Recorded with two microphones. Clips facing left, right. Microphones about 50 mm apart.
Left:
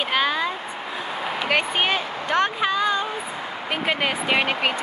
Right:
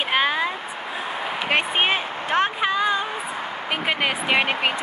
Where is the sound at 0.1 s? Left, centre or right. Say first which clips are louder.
Right 2 dB; centre.